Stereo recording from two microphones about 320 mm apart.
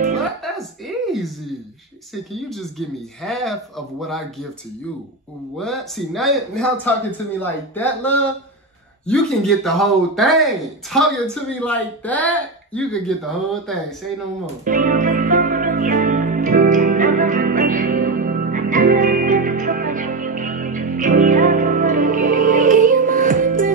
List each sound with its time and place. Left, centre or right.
0.4 s a sound: centre
2.3 s a man's voice: centre
5.6 s a man's voice: centre
14.4 s music: right